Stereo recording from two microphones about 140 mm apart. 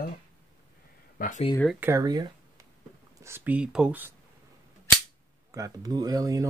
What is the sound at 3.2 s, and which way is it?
Speech, 15° right (ahead or behind).